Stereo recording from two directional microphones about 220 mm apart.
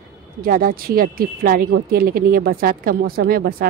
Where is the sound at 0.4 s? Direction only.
40° right (ahead or behind).